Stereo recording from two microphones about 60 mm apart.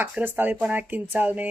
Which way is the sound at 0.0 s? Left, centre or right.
Right.